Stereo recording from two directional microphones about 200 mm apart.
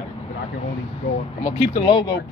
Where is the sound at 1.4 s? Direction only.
25° left (ahead or behind).